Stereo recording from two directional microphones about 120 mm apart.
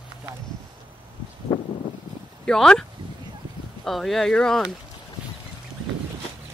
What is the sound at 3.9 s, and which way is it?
Speech, centre (ahead or behind).